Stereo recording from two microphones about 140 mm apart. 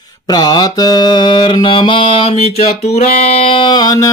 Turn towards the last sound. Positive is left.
turn(degrees=25)  # may be behind; listen again after turning